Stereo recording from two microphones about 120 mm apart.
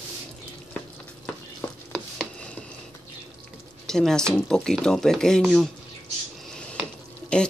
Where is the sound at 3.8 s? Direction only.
5° left (ahead or behind).